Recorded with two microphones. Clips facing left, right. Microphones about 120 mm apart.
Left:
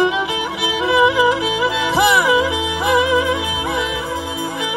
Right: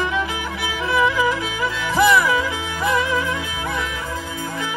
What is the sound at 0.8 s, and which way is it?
Music, 15° left (ahead or behind).